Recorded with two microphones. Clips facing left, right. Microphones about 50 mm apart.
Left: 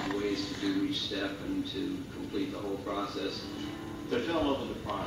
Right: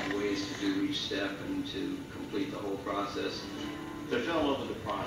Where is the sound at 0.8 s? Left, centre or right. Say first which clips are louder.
Even; centre.